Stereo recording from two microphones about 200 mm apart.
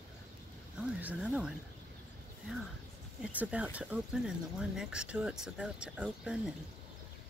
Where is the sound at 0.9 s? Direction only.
5° right (ahead or behind).